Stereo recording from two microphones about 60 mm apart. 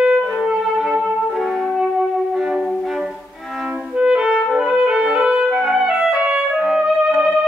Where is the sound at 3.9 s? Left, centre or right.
Centre.